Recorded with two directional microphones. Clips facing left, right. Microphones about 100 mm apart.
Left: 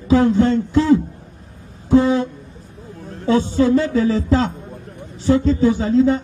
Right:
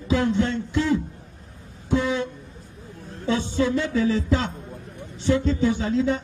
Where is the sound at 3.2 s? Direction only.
40° left (ahead or behind).